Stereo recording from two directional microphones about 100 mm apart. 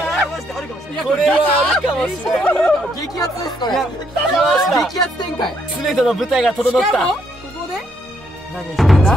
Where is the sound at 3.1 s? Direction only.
35° left (ahead or behind).